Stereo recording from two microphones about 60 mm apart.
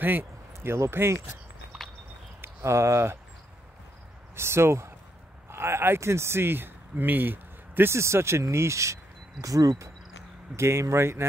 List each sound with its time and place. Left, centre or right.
0.0 s a sound: right
0.7 s speech: right
2.4 s speech: right
4.4 s speech: right
7.9 s speech: right
10.5 s speech: right